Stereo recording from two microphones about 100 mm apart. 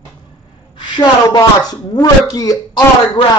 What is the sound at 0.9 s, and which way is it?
Speech, 45° left (ahead or behind).